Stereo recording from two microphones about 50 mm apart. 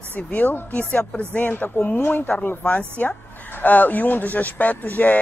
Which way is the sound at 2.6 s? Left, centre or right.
Left.